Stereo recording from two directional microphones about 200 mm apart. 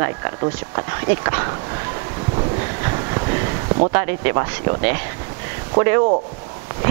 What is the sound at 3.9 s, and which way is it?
Speech, 15° right (ahead or behind).